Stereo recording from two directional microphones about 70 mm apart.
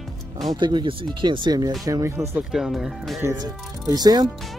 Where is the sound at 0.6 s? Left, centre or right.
Right.